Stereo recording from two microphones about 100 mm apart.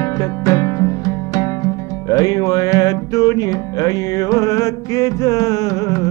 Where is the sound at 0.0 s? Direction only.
35° left (ahead or behind).